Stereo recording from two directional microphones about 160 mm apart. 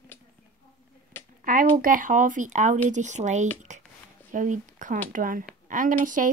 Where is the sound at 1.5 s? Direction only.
60° right (ahead or behind).